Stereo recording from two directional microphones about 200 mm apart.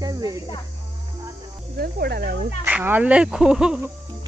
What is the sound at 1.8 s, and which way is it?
Speech, 50° right (ahead or behind).